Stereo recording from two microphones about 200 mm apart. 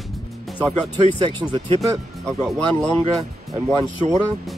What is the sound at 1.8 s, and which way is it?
Speech, centre (ahead or behind).